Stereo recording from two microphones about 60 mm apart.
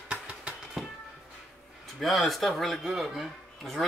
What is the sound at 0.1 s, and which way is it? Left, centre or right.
Music, centre.